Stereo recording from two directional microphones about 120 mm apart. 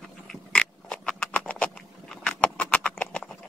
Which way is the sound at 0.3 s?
5° left (ahead or behind).